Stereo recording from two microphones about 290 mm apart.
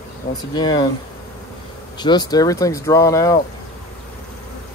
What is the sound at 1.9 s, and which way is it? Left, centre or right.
Speech, centre.